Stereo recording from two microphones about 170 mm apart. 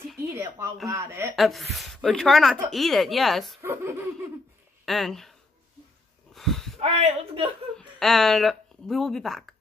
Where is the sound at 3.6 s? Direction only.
15° right (ahead or behind).